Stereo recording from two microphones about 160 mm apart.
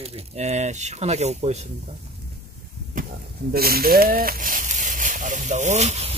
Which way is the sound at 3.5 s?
70° right (ahead or behind).